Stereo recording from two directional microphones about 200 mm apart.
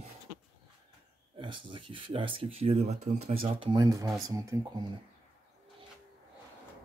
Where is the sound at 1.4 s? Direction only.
25° right (ahead or behind).